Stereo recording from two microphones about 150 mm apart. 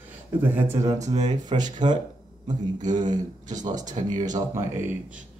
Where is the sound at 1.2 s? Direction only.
30° right (ahead or behind).